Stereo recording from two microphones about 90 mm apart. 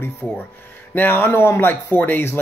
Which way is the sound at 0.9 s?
20° left (ahead or behind).